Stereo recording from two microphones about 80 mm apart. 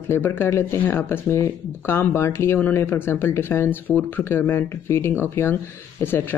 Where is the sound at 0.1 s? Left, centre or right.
Left.